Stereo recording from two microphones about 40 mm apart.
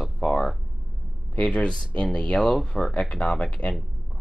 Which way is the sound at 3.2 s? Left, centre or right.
Left.